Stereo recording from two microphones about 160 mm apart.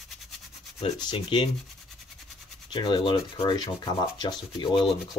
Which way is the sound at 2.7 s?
30° left (ahead or behind).